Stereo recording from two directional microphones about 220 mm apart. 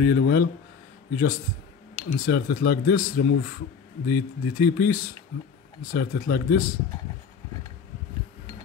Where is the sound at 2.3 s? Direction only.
45° left (ahead or behind).